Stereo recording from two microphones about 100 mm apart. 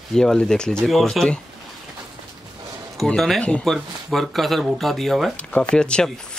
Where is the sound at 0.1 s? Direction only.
5° left (ahead or behind).